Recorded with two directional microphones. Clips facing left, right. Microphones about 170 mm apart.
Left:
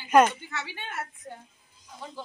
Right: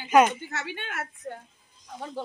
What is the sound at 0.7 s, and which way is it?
Speech, 65° right (ahead or behind).